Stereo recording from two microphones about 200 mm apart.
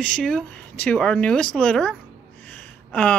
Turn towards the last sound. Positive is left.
turn(degrees=5)  # may be behind; listen again after turning